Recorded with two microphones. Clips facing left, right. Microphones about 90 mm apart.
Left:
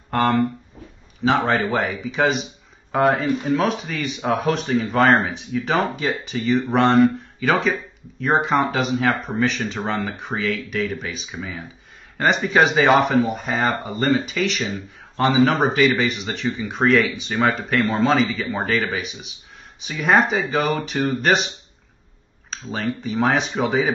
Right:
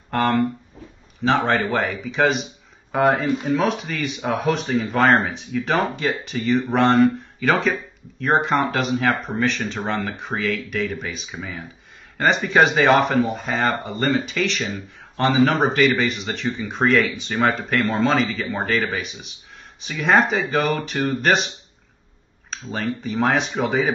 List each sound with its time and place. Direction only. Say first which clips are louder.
0.1 s speech: left 1 dB; centre (ahead or behind)
22.5 s speech: even; centre (ahead or behind)